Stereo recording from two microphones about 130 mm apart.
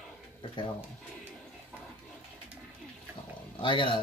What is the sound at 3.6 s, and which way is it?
Speech, 40° left (ahead or behind).